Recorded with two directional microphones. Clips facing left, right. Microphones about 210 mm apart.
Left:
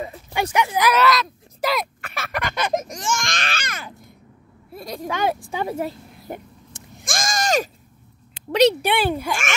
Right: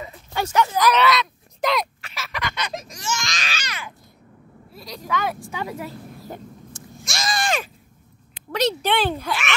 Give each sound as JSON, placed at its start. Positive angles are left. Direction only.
{"t": 0.3, "sound": "speech", "side_deg": 15}
{"t": 2.0, "sound": "baby cry", "side_deg": 55}
{"t": 4.7, "sound": "speech", "side_deg": 50}
{"t": 5.3, "sound": "a woman's voice", "side_deg": 25}
{"t": 6.7, "sound": "a sound", "side_deg": 50}
{"t": 8.8, "sound": "speech", "side_deg": 10}
{"t": 9.3, "sound": "speech", "side_deg": 45}